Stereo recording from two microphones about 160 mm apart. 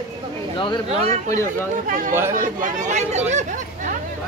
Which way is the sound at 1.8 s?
60° right (ahead or behind).